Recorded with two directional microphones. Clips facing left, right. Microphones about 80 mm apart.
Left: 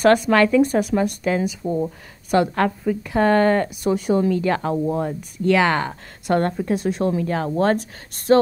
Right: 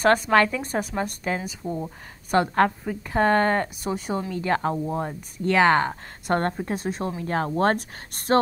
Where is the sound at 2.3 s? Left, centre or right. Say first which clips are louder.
Left 2 dB; right.